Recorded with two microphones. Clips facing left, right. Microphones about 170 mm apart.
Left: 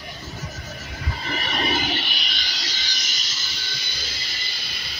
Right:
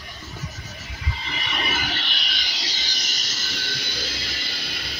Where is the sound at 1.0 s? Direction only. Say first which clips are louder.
Left 4 dB; 50° left (ahead or behind).